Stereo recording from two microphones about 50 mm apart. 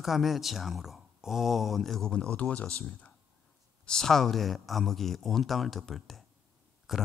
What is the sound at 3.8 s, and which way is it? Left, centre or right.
Speech, centre.